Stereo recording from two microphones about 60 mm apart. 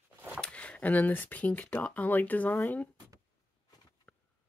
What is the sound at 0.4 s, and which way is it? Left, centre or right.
Speech, centre.